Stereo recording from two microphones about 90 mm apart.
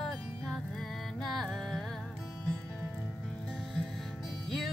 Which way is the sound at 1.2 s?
Centre (ahead or behind).